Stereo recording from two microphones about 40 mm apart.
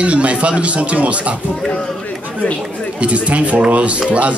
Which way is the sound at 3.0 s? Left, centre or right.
Right.